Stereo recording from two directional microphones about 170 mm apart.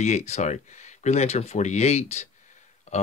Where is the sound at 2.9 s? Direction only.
45° left (ahead or behind).